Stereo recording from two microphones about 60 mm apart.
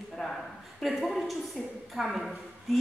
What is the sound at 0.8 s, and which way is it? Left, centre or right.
A woman's voice, centre.